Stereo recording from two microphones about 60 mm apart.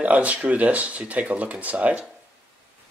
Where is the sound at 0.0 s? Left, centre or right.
Right.